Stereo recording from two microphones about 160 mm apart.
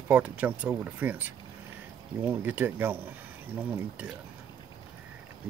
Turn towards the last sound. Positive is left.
turn(degrees=-10)  # may be behind; listen again after turning